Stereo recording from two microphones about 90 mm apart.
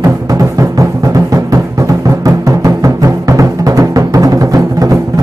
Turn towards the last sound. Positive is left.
turn(degrees=-40)  # may be behind; listen again after turning